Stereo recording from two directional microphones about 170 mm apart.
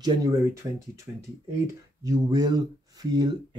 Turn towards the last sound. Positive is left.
turn(degrees=-25)  # may be behind; listen again after turning